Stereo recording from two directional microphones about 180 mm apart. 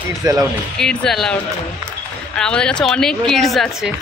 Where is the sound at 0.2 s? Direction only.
20° right (ahead or behind).